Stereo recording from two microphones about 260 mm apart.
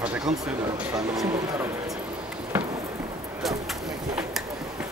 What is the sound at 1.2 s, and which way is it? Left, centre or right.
Speech, centre.